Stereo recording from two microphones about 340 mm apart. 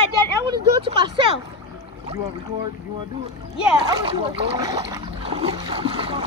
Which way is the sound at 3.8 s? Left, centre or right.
Centre.